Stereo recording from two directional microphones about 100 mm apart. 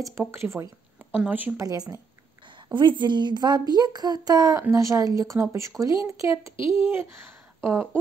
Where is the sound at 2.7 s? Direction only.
50° right (ahead or behind); by 7.8 s 25° right (ahead or behind).